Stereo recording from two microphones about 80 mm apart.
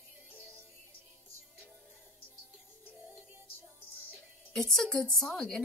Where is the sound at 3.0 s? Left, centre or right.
Centre.